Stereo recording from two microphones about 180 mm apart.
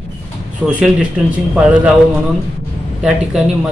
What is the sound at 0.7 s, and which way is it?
Speech, 5° right (ahead or behind).